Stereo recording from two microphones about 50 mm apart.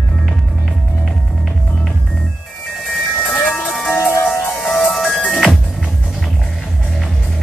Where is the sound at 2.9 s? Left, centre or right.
Centre.